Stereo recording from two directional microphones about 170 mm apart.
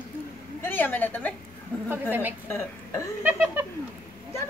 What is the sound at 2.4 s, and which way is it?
Speech, 15° left (ahead or behind).